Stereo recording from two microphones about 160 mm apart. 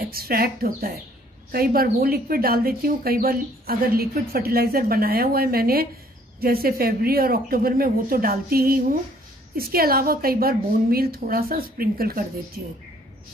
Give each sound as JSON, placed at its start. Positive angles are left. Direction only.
{"t": 0.0, "sound": "speech", "side_deg": -70}